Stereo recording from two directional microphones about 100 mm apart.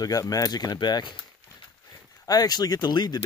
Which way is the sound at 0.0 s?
35° left (ahead or behind).